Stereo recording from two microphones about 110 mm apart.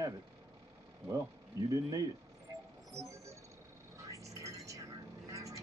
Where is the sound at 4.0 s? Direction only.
30° right (ahead or behind).